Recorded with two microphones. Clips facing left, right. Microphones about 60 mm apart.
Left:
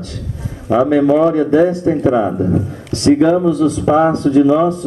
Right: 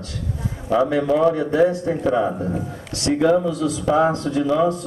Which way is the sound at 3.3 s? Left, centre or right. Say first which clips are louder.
Left 5 dB; centre.